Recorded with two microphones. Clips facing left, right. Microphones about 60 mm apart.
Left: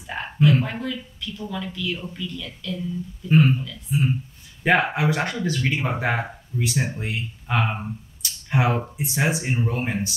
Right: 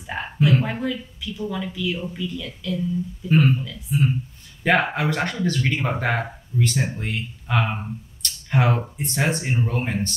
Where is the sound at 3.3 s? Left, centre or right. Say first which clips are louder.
Left 1 dB; centre.